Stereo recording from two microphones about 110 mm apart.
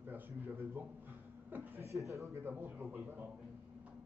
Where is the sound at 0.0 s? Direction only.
15° right (ahead or behind).